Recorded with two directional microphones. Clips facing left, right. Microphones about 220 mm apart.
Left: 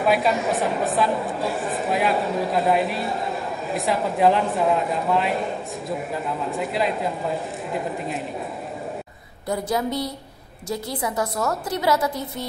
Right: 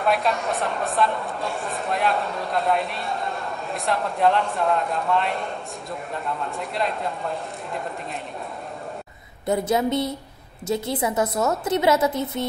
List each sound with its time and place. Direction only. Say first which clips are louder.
0.0 s speech: left 2 dB; centre (ahead or behind)
9.5 s a woman's voice: right 3 dB; 25° right (ahead or behind)